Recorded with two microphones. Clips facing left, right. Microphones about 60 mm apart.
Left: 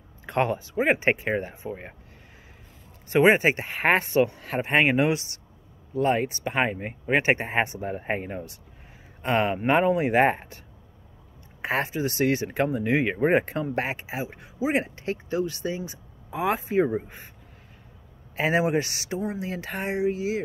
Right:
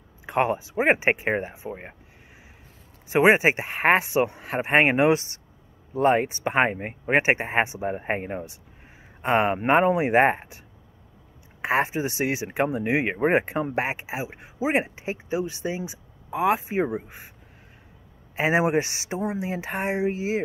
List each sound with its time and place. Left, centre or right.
0.3 s speech: centre
3.1 s speech: centre
3.6 s speech: centre; by 7.2 s right
7.2 s speech: centre
11.8 s speech: right
16.3 s speech: centre
16.6 s speech: centre
18.3 s speech: centre